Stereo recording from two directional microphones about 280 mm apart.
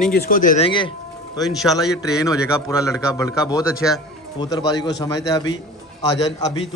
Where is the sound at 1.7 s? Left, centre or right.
Centre.